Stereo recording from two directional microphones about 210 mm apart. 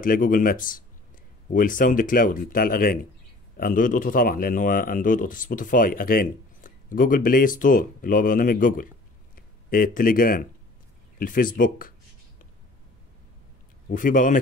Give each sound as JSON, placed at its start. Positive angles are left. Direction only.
{"t": 0.0, "sound": "speech", "side_deg": 40}
{"t": 13.8, "sound": "speech", "side_deg": 40}